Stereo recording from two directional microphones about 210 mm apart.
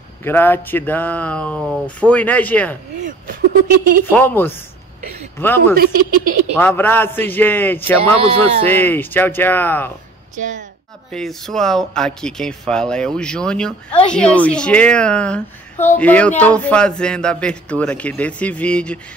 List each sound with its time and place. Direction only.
0.2 s speech: 10° left (ahead or behind)
3.6 s speech: 40° right (ahead or behind)
4.1 s speech: 10° left (ahead or behind)
5.8 s speech: 45° right (ahead or behind)
6.6 s speech: 10° left (ahead or behind)
10.3 s speech: 35° right (ahead or behind)
11.1 s a woman's voice: centre (ahead or behind)